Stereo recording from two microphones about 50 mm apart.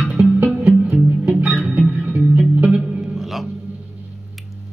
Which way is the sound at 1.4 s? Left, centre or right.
Right.